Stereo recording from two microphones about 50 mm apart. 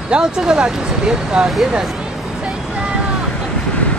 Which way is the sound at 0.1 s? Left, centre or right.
Centre.